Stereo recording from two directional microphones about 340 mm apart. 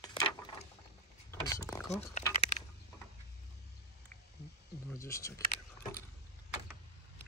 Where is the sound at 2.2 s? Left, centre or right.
Centre.